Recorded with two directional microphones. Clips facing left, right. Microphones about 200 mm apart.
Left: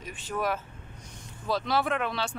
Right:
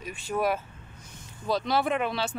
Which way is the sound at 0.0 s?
10° right (ahead or behind).